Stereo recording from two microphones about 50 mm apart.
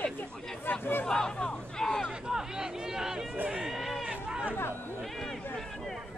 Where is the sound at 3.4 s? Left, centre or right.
Centre.